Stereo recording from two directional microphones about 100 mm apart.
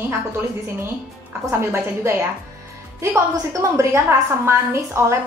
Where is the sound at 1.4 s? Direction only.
25° right (ahead or behind).